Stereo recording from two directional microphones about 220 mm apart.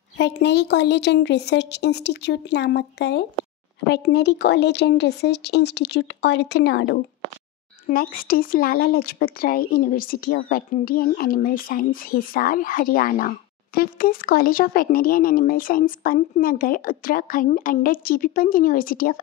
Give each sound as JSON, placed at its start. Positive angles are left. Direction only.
{"t": 0.2, "sound": "speech", "side_deg": 50}
{"t": 7.9, "sound": "speech", "side_deg": 40}